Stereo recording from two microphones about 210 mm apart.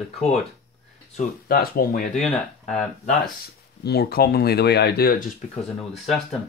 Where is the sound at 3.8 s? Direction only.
50° left (ahead or behind).